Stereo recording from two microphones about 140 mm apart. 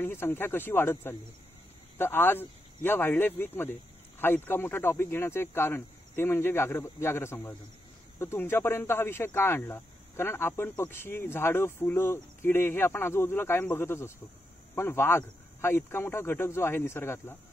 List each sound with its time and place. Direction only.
0.0 s speech: 15° left (ahead or behind)